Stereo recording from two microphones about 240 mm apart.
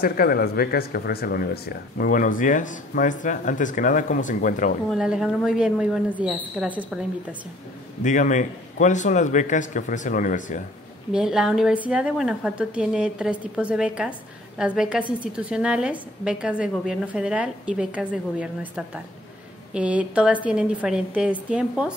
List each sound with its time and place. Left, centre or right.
0.0 s speech: left
4.9 s a woman's voice: centre
8.0 s speech: left
11.1 s a woman's voice: centre